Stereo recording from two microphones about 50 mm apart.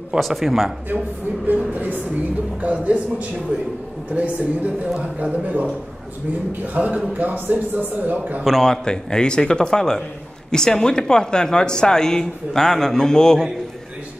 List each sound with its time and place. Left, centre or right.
0.2 s speech: centre
1.7 s a man's voice: right
6.7 s a man's voice: right
8.5 s speech: centre